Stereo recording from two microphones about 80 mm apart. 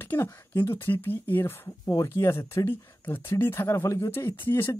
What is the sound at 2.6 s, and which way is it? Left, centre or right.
Speech, left.